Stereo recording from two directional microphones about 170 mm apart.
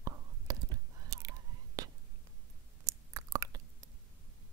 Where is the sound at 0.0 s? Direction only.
20° right (ahead or behind).